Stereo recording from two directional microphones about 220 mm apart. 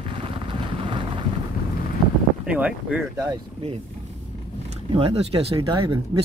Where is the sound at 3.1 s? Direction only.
20° right (ahead or behind).